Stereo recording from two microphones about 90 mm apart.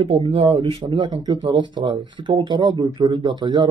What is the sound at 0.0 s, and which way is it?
Speech, 90° right.